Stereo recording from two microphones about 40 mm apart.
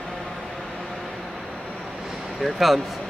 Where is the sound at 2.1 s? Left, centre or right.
Centre.